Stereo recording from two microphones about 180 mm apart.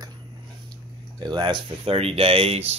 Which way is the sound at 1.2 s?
25° right (ahead or behind).